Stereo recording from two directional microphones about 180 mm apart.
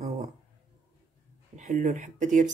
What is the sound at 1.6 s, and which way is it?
Speech, 45° right (ahead or behind).